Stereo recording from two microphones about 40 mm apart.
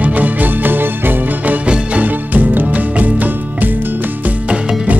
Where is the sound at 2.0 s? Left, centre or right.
Right.